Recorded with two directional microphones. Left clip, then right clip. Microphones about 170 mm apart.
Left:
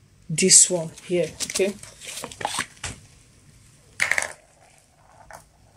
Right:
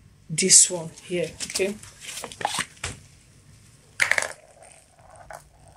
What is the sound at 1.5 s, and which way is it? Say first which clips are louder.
Speech: left 3 dB; 25° left (ahead or behind).